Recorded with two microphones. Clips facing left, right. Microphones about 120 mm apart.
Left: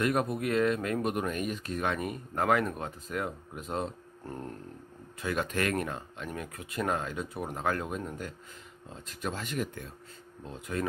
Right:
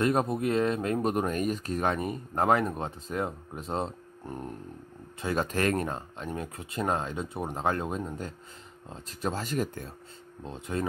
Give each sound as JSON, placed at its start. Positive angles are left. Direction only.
{"t": 0.0, "sound": "speech", "side_deg": -25}
{"t": 1.0, "sound": "speech", "side_deg": -35}
{"t": 4.2, "sound": "a sound", "side_deg": -15}
{"t": 5.2, "sound": "speech", "side_deg": -35}
{"t": 10.4, "sound": "speech", "side_deg": -25}